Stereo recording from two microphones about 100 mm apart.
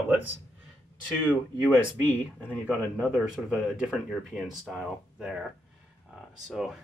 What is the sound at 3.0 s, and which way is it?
Speech, centre (ahead or behind).